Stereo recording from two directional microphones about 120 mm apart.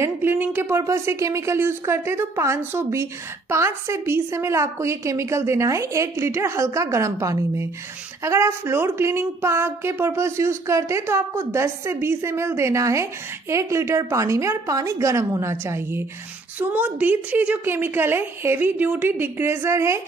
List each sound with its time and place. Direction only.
0.0 s a woman's voice: 20° right (ahead or behind)